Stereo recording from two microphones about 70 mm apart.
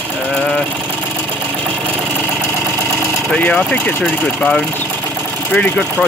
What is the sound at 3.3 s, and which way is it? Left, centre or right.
Speech, left.